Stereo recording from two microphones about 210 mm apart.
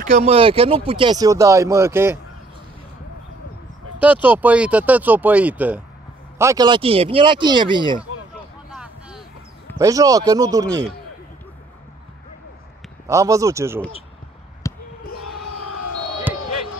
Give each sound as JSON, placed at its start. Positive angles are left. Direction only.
{"t": 0.0, "sound": "speech", "side_deg": -30}
{"t": 4.0, "sound": "speech", "side_deg": -5}
{"t": 8.7, "sound": "vehicle", "side_deg": -5}
{"t": 9.8, "sound": "speech", "side_deg": -15}
{"t": 13.0, "sound": "speech", "side_deg": -15}
{"t": 14.6, "sound": "basketball bounce", "side_deg": 15}